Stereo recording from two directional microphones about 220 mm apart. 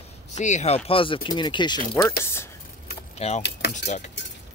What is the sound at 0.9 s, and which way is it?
Speech, 25° left (ahead or behind).